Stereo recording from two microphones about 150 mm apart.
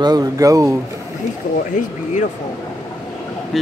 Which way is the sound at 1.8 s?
60° left (ahead or behind).